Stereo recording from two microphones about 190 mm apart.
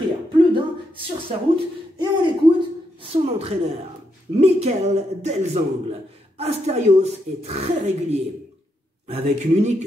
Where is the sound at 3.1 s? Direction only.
30° right (ahead or behind).